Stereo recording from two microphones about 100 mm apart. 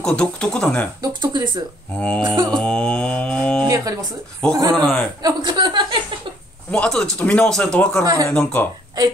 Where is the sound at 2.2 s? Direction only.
50° right (ahead or behind).